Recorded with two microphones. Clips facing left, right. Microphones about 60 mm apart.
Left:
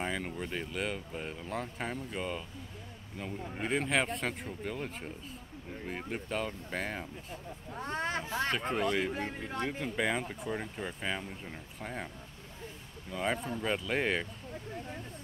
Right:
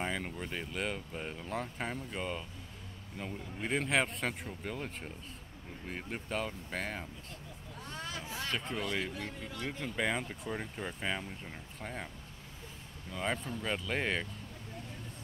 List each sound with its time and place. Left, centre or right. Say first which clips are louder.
0.0 s speech: left 1 dB; centre
3.6 s speech: left 1 dB; centre
7.7 s speech: left 8 dB; left
9.9 s speech: left 1 dB; centre
13.1 s speech: left 3 dB; centre